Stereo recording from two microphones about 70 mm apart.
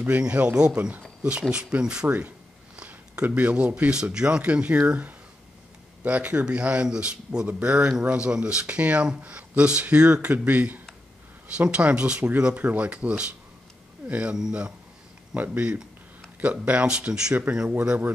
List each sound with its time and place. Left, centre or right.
0.2 s speech: centre
15.3 s speech: right